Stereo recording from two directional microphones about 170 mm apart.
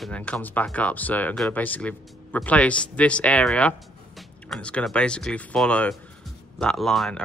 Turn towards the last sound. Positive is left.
turn(degrees=0)  # may be behind; listen again after turning